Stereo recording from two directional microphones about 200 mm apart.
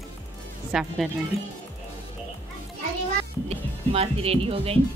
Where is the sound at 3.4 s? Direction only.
30° right (ahead or behind).